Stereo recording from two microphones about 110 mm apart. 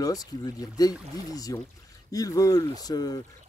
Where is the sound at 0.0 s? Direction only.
35° left (ahead or behind).